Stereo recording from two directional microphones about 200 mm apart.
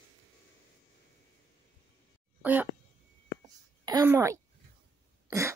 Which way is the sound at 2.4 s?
10° right (ahead or behind).